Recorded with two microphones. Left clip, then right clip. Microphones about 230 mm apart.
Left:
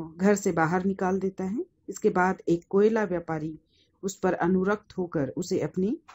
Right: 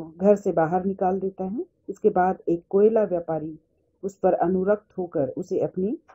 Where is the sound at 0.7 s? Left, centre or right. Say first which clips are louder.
Right 4 dB; left.